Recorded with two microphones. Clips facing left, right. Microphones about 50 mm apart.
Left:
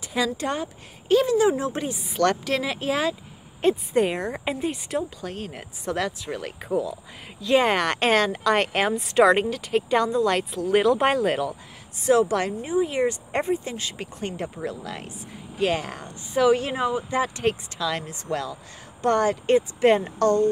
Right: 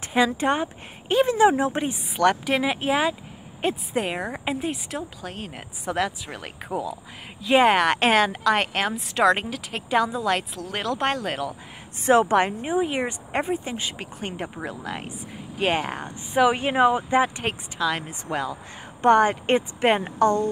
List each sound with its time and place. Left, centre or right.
0.1 s speech: right
3.6 s a woman's voice: centre
12.1 s speech: right
13.3 s speech: centre
15.6 s speech: right
17.4 s speech: centre